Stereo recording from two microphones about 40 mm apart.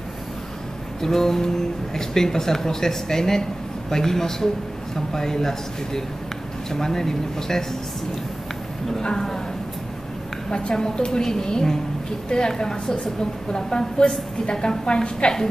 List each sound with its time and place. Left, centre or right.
1.0 s speech: centre
9.0 s speech: centre
10.5 s a woman's voice: centre